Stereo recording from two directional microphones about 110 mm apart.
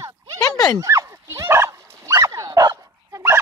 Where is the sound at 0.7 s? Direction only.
25° right (ahead or behind).